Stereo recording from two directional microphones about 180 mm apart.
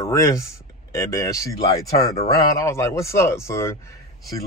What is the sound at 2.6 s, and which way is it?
A man's voice, 15° left (ahead or behind).